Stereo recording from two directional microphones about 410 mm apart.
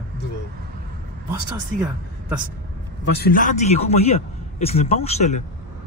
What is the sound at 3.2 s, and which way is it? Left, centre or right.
A man's voice, centre.